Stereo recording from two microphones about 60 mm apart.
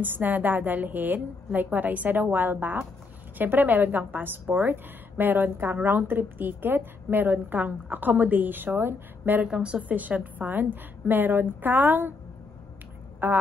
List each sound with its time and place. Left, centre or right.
0.0 s a woman's voice: right
9.5 s a woman's voice: centre
13.2 s a woman's voice: right